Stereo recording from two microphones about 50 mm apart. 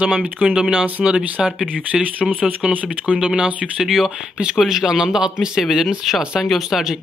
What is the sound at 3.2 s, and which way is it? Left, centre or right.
Speech, centre.